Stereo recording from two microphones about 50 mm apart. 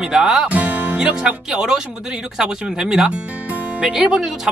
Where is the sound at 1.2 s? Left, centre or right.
Centre.